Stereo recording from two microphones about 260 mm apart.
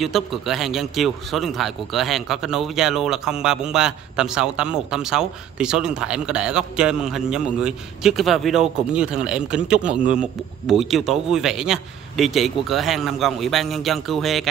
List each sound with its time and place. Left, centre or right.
0.0 s a man's voice: centre